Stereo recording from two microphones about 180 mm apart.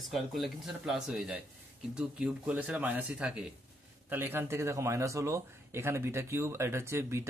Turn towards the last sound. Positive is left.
turn(degrees=-15)  # may be behind; listen again after turning